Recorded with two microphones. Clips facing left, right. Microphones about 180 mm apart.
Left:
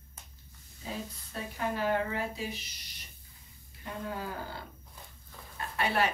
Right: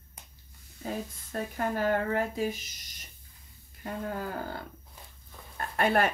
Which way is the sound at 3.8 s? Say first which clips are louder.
Right 3 dB; 50° right (ahead or behind).